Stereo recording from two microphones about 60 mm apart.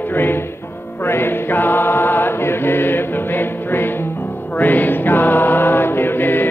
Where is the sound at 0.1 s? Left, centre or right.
Left.